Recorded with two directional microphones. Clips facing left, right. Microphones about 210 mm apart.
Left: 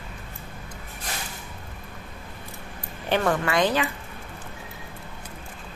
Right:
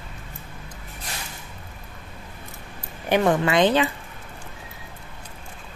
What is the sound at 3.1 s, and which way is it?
Speech, 20° right (ahead or behind).